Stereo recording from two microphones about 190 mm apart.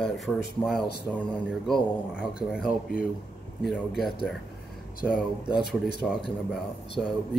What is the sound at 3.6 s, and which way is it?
Speech, centre (ahead or behind).